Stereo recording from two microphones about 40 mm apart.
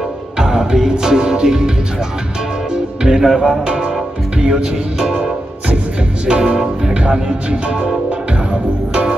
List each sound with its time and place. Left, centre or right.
0.4 s music: centre
2.7 s music: centre
3.6 s speech: right
4.4 s music: right
6.2 s speech: right